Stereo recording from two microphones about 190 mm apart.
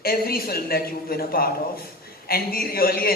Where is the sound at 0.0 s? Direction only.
50° left (ahead or behind).